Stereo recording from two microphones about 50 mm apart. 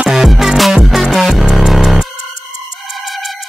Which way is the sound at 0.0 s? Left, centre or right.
Centre.